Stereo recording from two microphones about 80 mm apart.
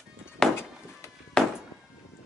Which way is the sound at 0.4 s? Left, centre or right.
Centre.